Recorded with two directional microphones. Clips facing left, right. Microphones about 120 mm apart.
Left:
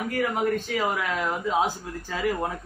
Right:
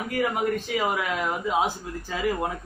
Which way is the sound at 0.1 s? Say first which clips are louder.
Right 1 dB; 15° right (ahead or behind).